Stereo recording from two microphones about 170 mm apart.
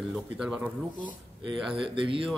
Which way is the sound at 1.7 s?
30° right (ahead or behind).